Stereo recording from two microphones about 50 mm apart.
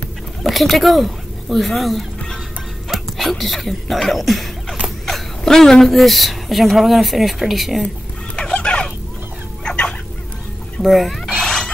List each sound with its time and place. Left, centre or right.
0.4 s speech: centre
2.9 s cough: centre
4.8 s speech: centre
8.4 s a sound: centre
9.7 s fowl: centre
10.8 s cat: centre